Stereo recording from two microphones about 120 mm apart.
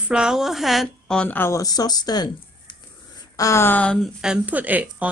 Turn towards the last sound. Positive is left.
turn(degrees=-15)  # may be behind; listen again after turning